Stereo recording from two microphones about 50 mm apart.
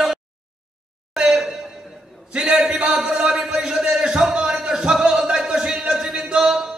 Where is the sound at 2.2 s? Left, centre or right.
Right.